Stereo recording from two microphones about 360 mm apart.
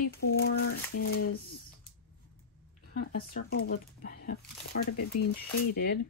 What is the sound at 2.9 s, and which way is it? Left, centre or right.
Speech, left.